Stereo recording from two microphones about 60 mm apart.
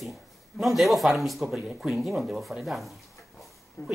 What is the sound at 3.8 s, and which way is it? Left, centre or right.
Speech, left.